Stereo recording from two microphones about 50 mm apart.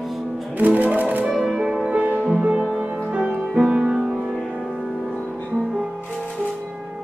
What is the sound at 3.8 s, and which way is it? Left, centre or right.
Music, centre.